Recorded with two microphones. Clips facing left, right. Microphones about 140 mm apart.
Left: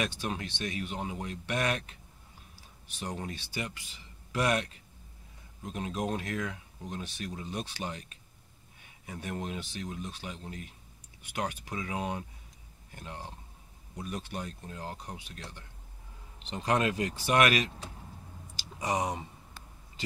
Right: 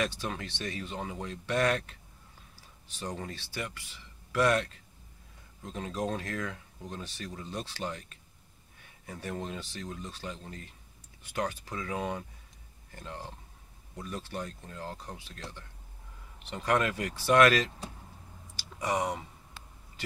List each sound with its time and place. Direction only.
0.0 s speech: 15° left (ahead or behind)
3.0 s speech: 15° left (ahead or behind)
16.4 s speech: 20° left (ahead or behind)